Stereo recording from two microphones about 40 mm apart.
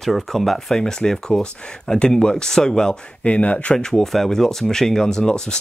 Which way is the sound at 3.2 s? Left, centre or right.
Left.